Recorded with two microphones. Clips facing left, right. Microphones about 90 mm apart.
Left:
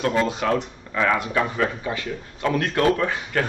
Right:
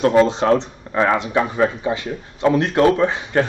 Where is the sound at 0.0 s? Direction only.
30° right (ahead or behind).